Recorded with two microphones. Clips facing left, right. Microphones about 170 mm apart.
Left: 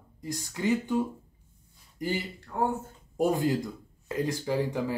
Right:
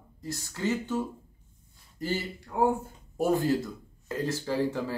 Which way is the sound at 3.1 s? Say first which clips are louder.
Even; 15° left (ahead or behind).